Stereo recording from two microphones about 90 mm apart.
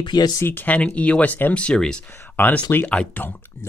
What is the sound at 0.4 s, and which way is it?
Speech, 25° left (ahead or behind).